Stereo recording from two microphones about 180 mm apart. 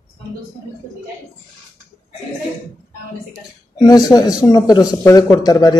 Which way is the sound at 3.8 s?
20° left (ahead or behind).